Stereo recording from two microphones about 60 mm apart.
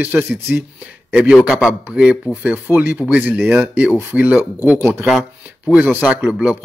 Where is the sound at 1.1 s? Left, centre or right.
Centre.